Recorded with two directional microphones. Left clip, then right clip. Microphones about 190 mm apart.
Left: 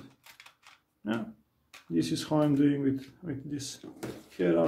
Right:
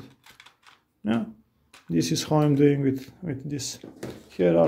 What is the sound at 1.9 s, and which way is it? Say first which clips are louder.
Speech: right 5 dB; 35° right (ahead or behind).